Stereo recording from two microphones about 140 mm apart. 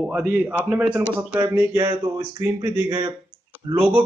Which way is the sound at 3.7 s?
15° right (ahead or behind).